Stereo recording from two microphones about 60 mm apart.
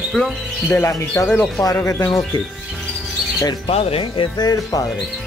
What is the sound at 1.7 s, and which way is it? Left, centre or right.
Bird, left.